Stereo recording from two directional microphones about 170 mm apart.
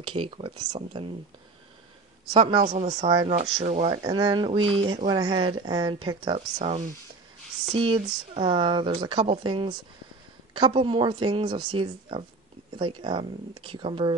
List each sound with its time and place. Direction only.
0.0 s speech: 30° right (ahead or behind)
2.3 s speech: 30° right (ahead or behind)
2.6 s speech: 45° right (ahead or behind)
3.1 s speech: 30° right (ahead or behind)
3.6 s speech: 45° right (ahead or behind)
3.9 s speech: 25° right (ahead or behind)